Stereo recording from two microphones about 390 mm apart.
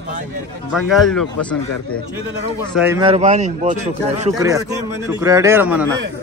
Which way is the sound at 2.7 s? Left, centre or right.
Centre.